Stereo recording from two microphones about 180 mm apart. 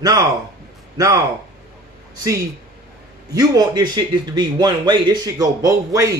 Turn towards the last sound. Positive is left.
turn(degrees=-20)  # may be behind; listen again after turning